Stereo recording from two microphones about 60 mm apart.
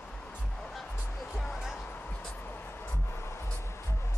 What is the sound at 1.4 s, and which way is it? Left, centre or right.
Music, centre.